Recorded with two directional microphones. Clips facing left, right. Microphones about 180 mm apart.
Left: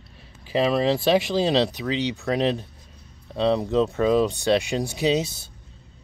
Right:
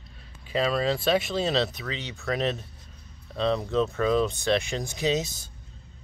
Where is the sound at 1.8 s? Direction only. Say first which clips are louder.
Left 10 dB; 15° left (ahead or behind).